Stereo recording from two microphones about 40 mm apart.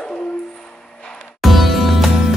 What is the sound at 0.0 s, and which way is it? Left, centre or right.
Music, left.